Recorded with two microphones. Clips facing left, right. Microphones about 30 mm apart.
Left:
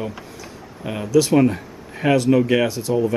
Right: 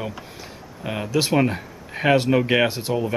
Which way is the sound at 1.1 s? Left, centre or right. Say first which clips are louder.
Left 5 dB; right.